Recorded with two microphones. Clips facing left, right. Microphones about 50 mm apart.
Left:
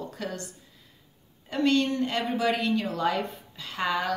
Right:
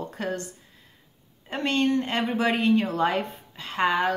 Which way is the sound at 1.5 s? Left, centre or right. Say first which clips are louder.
Even; right.